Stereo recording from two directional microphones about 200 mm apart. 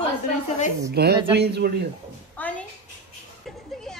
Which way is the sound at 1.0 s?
55° right (ahead or behind).